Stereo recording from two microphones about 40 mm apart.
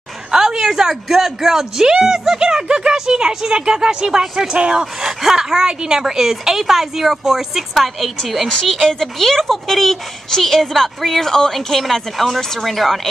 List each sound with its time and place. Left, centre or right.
0.3 s speech: centre